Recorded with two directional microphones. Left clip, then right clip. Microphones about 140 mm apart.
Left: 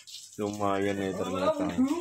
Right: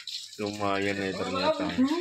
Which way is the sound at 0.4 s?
15° left (ahead or behind).